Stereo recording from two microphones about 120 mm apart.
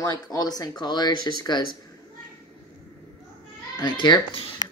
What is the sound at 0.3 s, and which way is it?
Speech, 35° left (ahead or behind).